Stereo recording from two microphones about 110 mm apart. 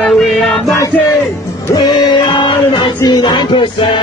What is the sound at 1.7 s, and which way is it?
Music, 40° left (ahead or behind).